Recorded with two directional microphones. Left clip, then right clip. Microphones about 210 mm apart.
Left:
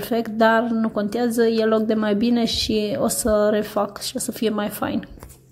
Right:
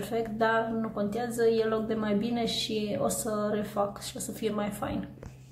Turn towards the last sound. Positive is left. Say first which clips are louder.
# left 8 dB
turn(degrees=35)  # may be behind; listen again after turning